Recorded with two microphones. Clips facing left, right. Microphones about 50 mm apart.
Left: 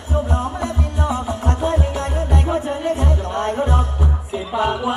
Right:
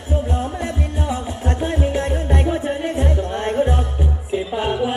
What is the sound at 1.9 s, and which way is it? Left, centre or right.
Music, right.